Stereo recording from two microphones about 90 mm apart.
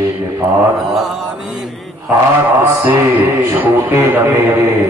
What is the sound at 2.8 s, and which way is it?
Music, 20° right (ahead or behind).